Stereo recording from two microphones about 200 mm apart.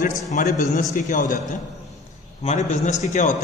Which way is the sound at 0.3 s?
35° left (ahead or behind).